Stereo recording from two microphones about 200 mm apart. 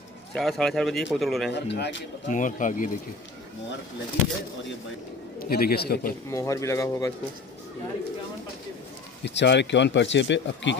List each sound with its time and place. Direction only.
0.3 s speech: centre (ahead or behind)
1.5 s speech: 60° left (ahead or behind)
2.2 s speech: 40° left (ahead or behind)
5.4 s a man's voice: 50° left (ahead or behind)
6.3 s speech: 15° left (ahead or behind)
9.2 s speech: 60° left (ahead or behind)